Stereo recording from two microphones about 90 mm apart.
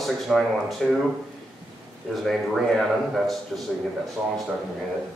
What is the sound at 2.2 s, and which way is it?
Speech, centre (ahead or behind).